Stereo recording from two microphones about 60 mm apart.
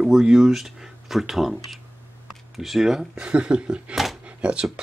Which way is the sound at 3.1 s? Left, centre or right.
Centre.